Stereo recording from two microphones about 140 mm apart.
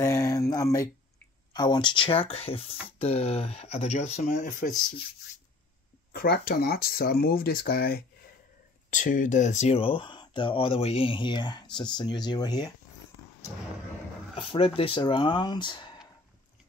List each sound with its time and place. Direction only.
0.0 s a sound: 20° left (ahead or behind)
1.5 s speech: 30° left (ahead or behind); by 4.7 s 65° left (ahead or behind)
6.1 s speech: 90° left
8.9 s speech: 65° left (ahead or behind); by 12.7 s 30° left (ahead or behind)
14.3 s speech: 40° left (ahead or behind)